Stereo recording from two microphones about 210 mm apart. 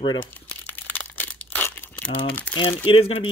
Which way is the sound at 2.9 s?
25° left (ahead or behind).